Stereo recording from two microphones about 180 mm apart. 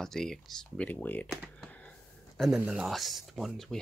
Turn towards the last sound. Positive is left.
turn(degrees=0)  # may be behind; listen again after turning